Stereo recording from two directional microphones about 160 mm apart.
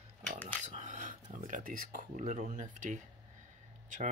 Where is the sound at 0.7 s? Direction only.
50° right (ahead or behind).